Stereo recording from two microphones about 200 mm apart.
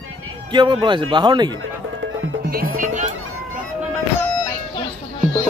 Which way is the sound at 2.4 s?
45° right (ahead or behind).